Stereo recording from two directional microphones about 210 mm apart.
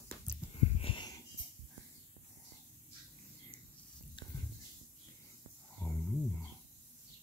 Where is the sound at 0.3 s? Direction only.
10° left (ahead or behind).